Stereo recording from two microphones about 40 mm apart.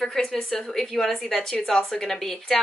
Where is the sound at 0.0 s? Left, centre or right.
Centre.